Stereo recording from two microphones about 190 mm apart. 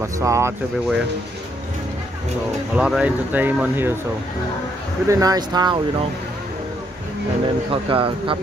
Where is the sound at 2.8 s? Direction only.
5° right (ahead or behind).